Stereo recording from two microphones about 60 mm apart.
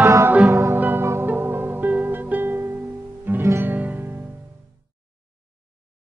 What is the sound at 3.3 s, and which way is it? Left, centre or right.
Guitar, right.